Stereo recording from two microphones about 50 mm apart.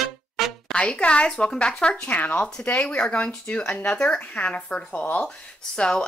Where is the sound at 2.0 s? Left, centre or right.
Left.